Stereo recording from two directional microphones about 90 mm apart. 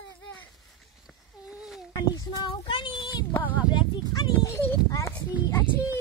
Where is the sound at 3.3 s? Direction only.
20° left (ahead or behind).